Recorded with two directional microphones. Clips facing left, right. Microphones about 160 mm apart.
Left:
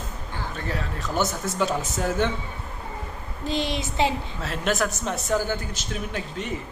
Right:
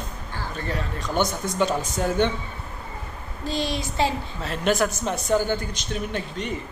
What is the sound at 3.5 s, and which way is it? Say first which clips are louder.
Speech: even; 20° left (ahead or behind).